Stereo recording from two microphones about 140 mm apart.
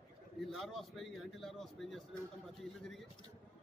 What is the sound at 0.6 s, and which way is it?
A man's voice, centre (ahead or behind).